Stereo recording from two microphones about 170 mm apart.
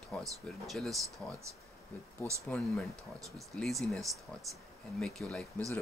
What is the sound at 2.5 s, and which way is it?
Speech, centre (ahead or behind).